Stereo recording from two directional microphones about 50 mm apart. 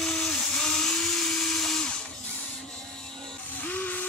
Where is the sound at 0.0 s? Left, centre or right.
Centre.